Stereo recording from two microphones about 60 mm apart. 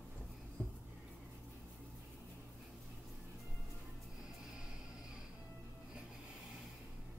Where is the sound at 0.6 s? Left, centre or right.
Left.